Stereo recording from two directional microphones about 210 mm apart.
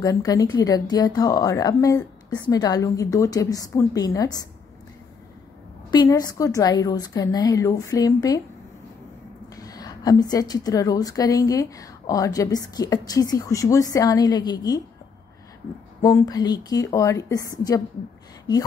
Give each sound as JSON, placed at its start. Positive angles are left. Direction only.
{"t": 0.0, "sound": "a woman's voice", "side_deg": 15}
{"t": 5.9, "sound": "a woman's voice", "side_deg": 20}
{"t": 9.6, "sound": "a woman's voice", "side_deg": 20}
{"t": 16.0, "sound": "a woman's voice", "side_deg": 15}